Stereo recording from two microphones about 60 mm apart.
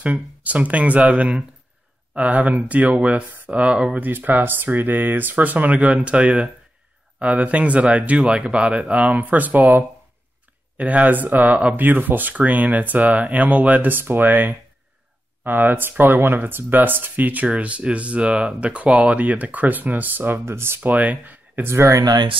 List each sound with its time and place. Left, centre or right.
0.0 s speech: right
4.1 s speech: right
20.4 s speech: right
20.9 s speech: right
21.6 s speech: right